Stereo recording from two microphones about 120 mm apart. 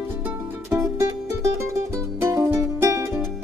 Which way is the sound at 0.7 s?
25° right (ahead or behind).